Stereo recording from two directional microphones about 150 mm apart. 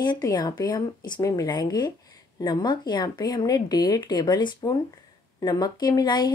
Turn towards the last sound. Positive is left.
turn(degrees=30)  # may be behind; listen again after turning